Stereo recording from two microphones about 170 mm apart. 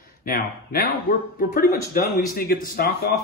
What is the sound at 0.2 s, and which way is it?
Speech, 60° left (ahead or behind).